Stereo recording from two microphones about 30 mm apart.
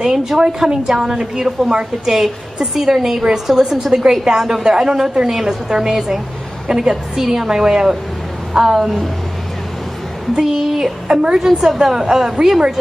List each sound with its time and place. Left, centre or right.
0.0 s a woman's voice: centre
5.3 s a woman's voice: centre
10.3 s a woman's voice: centre